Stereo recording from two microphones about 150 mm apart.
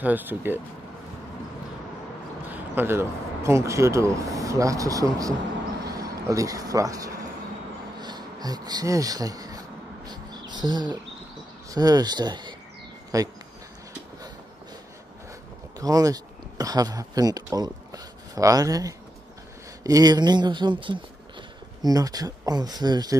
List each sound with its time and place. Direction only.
0.0 s speech: 10° right (ahead or behind)
2.5 s speech: 15° right (ahead or behind)
5.9 s a sound: 25° right (ahead or behind)
11.7 s speech: 25° right (ahead or behind)
15.8 s speech: 25° right (ahead or behind)